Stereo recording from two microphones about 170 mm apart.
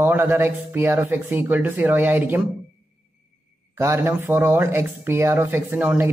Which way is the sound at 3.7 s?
15° right (ahead or behind).